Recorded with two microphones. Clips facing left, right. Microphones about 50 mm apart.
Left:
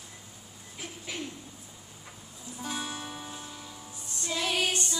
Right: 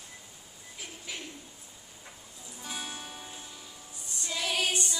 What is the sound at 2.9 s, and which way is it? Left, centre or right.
Music, left.